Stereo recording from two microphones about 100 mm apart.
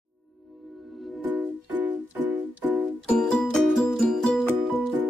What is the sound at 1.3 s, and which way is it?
Music, 15° right (ahead or behind).